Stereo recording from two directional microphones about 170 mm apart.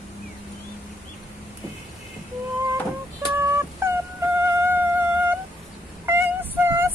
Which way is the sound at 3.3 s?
15° right (ahead or behind).